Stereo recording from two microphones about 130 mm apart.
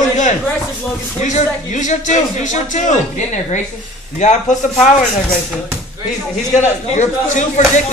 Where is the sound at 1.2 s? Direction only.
70° left (ahead or behind).